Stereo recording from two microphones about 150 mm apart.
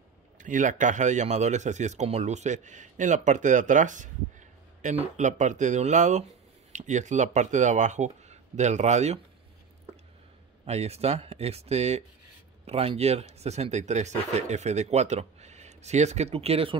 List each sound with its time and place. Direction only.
0.4 s a man's voice: 60° right (ahead or behind)
10.7 s a man's voice: 45° right (ahead or behind)